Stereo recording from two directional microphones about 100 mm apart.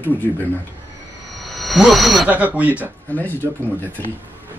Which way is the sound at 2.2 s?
15° right (ahead or behind).